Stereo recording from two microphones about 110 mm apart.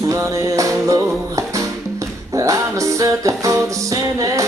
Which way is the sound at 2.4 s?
30° right (ahead or behind).